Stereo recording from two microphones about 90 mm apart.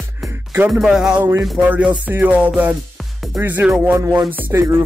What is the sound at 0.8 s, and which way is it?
Music, 5° right (ahead or behind).